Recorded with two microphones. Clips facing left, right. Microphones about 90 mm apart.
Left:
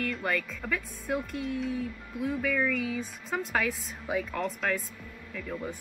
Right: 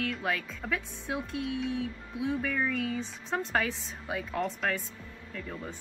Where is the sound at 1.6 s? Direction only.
80° right.